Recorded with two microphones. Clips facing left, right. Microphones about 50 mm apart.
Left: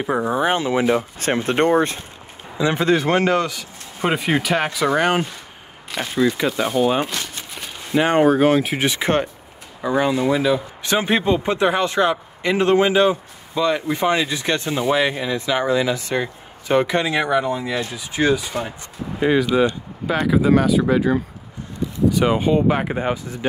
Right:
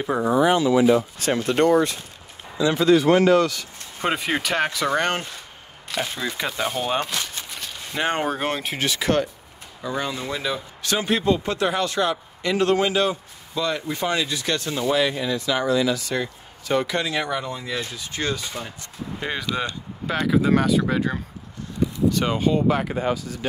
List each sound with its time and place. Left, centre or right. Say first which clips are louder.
0.3 s speech: right 4 dB; left
3.4 s speech: right 1 dB; centre
7.2 s a sound: left 1 dB; centre
8.0 s speech: left 8 dB; centre
8.7 s speech: left 3 dB; left